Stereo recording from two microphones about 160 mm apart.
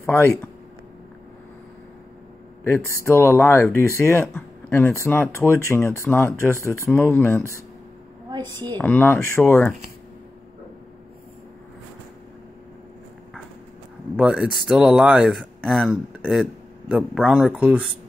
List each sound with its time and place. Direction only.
0.0 s speech: 15° left (ahead or behind)
2.6 s speech: 15° left (ahead or behind)
8.6 s speech: 10° left (ahead or behind)
14.1 s speech: 5° right (ahead or behind)